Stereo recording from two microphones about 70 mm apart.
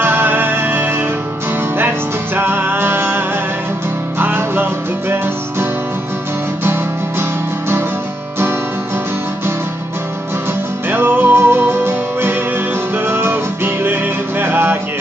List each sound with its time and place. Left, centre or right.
0.0 s music: right
2.3 s music: right
6.6 s music: right
10.9 s music: right
14.4 s music: right